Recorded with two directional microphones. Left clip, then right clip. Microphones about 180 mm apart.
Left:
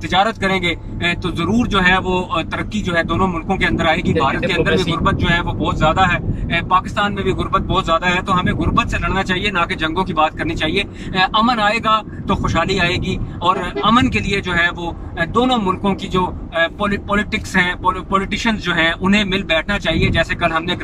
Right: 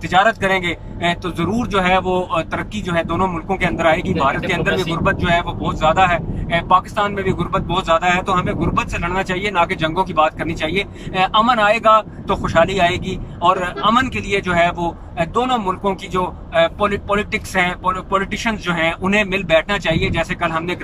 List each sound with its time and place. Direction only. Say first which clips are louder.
0.1 s speech: right 2 dB; 5° right (ahead or behind)
7.2 s speech: left 2 dB; 5° right (ahead or behind)